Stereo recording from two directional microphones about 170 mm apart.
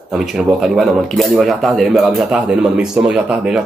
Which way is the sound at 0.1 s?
Centre (ahead or behind).